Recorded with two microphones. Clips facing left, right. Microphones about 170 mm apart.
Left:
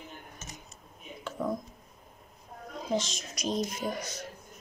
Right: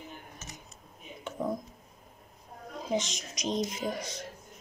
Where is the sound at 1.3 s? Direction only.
20° right (ahead or behind).